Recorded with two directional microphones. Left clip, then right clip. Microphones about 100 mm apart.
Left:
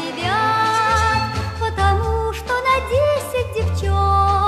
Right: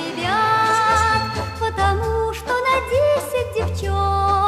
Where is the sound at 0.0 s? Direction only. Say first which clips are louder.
Even; 20° left (ahead or behind).